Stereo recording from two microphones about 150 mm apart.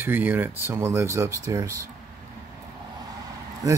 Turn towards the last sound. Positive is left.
turn(degrees=-25)  # may be behind; listen again after turning